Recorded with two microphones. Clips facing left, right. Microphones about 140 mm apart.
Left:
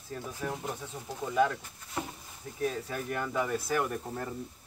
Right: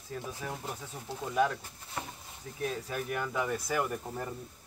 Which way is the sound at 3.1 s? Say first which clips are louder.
Left 2 dB; 10° right (ahead or behind).